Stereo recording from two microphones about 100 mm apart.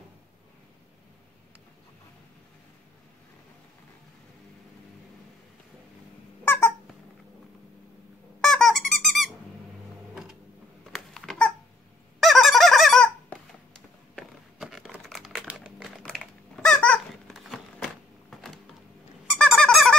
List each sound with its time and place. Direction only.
6.4 s squeak: 25° left (ahead or behind)
8.4 s squeak: 5° left (ahead or behind)
10.9 s babbling: 5° left (ahead or behind)
12.2 s fowl: centre (ahead or behind)
14.6 s a sound: centre (ahead or behind)
15.0 s crumpling: centre (ahead or behind)
16.0 s typing: 5° left (ahead or behind)
16.7 s squeak: 15° left (ahead or behind)
17.3 s typing: centre (ahead or behind)
19.2 s squeak: centre (ahead or behind)